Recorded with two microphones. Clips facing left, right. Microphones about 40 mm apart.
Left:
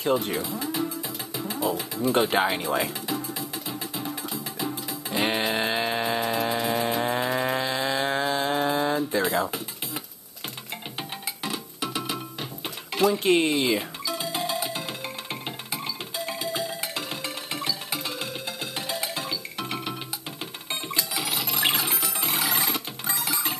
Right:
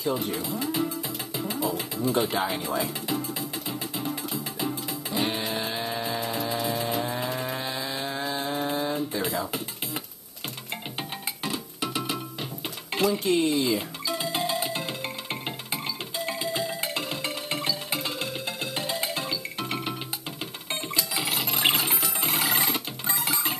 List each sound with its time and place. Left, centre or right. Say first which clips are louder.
0.0 s speech: left 3 dB; left
1.6 s speech: left 4 dB; left
5.1 s a sound: left 4 dB; left
9.2 s music: left 4 dB; left
11.8 s music: even; right
13.2 s speech: left 2 dB; left
14.2 s music: right 1 dB; right
16.3 s music: right 1 dB; right
18.9 s music: right 1 dB; right
21.1 s a sound: right 1 dB; right
22.2 s music: even; right